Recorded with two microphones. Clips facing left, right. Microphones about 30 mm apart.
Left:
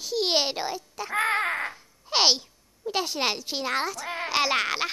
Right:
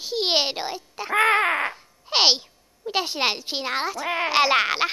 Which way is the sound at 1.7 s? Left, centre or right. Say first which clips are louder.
Right 3 dB; right.